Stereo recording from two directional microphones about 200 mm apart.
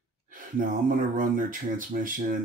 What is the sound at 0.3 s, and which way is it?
Speech, 45° right (ahead or behind).